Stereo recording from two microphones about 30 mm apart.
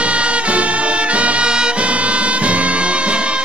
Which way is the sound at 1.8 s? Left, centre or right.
Right.